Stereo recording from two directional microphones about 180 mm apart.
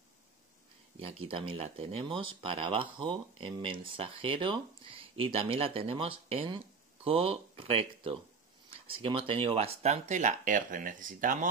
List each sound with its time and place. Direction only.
0.9 s speech: 30° right (ahead or behind); by 11.3 s 50° right (ahead or behind)